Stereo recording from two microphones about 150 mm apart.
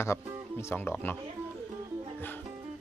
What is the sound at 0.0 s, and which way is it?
Speech, 15° left (ahead or behind).